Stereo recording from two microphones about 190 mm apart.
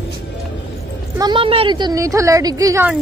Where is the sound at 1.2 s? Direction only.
25° right (ahead or behind).